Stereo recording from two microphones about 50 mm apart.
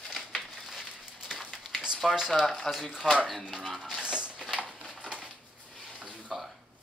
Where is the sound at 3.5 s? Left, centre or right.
Centre.